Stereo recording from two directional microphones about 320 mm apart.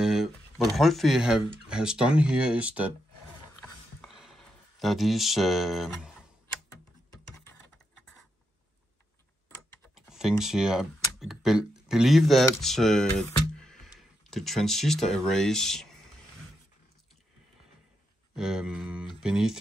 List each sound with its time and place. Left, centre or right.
0.0 s speech: centre
4.0 s a sound: centre
9.9 s speech: centre
18.3 s speech: centre